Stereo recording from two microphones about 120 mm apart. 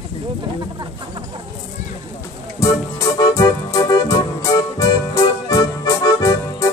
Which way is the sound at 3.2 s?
30° left (ahead or behind).